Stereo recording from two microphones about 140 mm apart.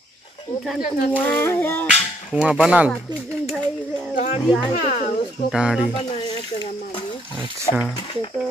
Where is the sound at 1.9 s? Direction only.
50° left (ahead or behind).